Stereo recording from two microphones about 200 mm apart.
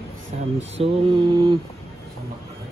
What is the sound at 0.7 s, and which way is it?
Mantra, 25° right (ahead or behind).